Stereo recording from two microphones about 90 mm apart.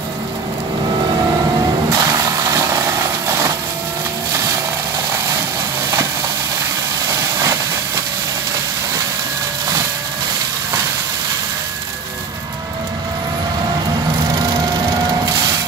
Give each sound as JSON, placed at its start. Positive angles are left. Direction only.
{"t": 1.9, "sound": "vehicle", "side_deg": -35}
{"t": 4.3, "sound": "a sound", "side_deg": -35}
{"t": 7.1, "sound": "vehicle", "side_deg": -40}